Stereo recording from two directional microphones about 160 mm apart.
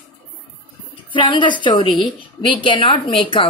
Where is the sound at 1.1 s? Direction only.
30° left (ahead or behind).